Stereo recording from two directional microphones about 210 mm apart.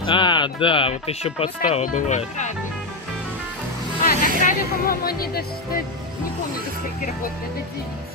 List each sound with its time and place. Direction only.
0.0 s speech: 20° left (ahead or behind)
4.0 s speech: 40° left (ahead or behind)